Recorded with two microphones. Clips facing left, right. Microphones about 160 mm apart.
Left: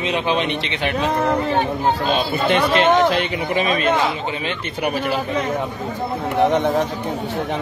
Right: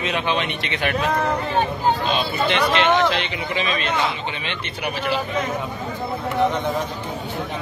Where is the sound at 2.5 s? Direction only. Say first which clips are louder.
Left 4 dB; 40° left (ahead or behind).